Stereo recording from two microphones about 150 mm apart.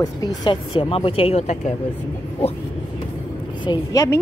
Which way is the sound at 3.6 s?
25° left (ahead or behind).